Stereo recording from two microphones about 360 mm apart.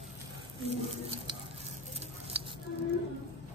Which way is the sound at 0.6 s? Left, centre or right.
Centre.